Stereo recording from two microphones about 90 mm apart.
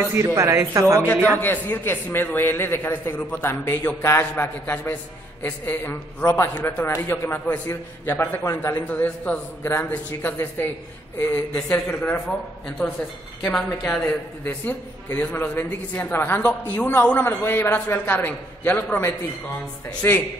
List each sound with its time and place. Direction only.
0.1 s a man's voice: 30° right (ahead or behind)
1.4 s a man's voice: 20° left (ahead or behind)
14.4 s a man's voice: 20° left (ahead or behind)